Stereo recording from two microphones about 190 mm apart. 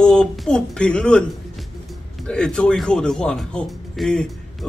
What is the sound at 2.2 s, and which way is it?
A man's voice, 5° left (ahead or behind).